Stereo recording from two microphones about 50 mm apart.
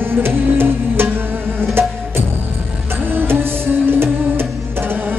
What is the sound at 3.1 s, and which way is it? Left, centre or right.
Music, right.